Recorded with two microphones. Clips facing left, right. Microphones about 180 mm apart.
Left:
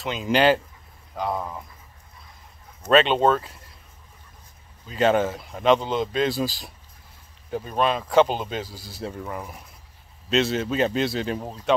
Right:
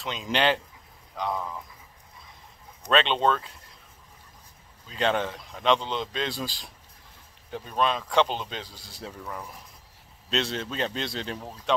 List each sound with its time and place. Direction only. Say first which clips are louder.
0.0 s speech: left 6 dB; 5° left (ahead or behind)
1.3 s speech: left 2 dB; 20° left (ahead or behind)
2.9 s speech: left 5 dB; 5° left (ahead or behind)
4.8 s speech: left 6 dB; 5° left (ahead or behind)
10.3 s speech: left 7 dB; 5° left (ahead or behind)